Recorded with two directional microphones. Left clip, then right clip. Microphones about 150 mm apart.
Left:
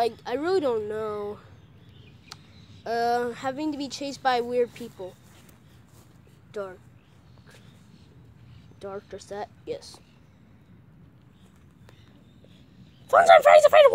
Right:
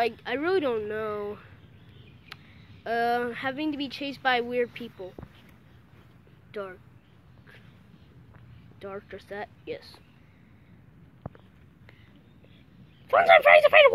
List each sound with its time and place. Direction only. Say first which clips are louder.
0.0 s speech: left 1 dB; 5° left (ahead or behind)
2.3 s a sound: even; 5° left (ahead or behind)
2.8 s speech: left 1 dB; 10° left (ahead or behind)
6.5 s speech: left 2 dB; 10° left (ahead or behind)
8.8 s speech: left 2 dB; 15° left (ahead or behind)
13.1 s speech: left 2 dB; 15° left (ahead or behind)